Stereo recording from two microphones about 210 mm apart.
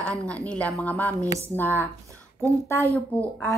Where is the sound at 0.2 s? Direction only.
5° left (ahead or behind).